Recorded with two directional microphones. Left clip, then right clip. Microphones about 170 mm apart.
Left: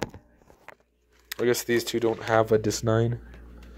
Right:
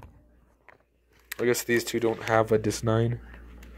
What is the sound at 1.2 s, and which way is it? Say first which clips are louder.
Speech: left 1 dB; 5° left (ahead or behind).